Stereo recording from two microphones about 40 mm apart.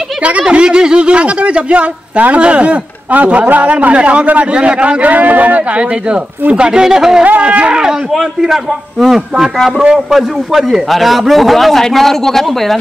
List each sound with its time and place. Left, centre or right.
0.4 s a man's voice: right
7.2 s speech: right
8.1 s a man's voice: centre